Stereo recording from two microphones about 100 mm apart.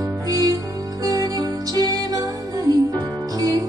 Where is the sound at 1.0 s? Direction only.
40° right (ahead or behind).